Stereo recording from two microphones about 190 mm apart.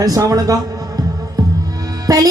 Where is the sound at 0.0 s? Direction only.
20° right (ahead or behind).